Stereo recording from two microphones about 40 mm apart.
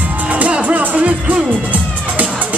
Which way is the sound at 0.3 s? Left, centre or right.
Right.